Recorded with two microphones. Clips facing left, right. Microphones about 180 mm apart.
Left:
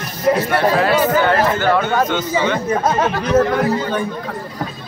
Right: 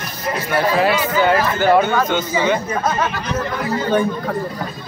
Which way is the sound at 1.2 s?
10° right (ahead or behind).